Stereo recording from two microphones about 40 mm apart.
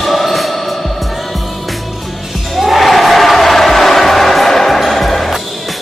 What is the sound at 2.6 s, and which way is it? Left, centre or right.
Crowd, centre.